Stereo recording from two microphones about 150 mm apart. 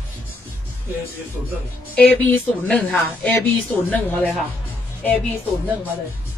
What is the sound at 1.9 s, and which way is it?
Speech, 10° left (ahead or behind).